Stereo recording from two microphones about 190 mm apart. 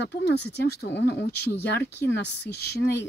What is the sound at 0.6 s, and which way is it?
Speech, 60° left (ahead or behind).